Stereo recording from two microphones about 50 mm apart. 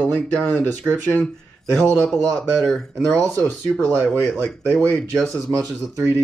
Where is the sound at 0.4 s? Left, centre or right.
Left.